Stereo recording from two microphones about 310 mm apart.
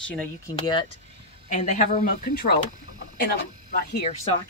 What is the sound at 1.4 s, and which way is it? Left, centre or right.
A woman's voice, left.